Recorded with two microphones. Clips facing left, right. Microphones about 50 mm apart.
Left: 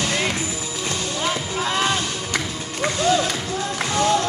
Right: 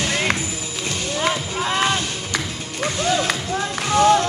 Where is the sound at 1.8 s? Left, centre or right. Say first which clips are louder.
Right 2 dB; right.